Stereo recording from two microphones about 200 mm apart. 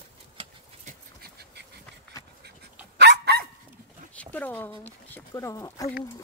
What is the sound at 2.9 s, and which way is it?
Dog, 55° right (ahead or behind).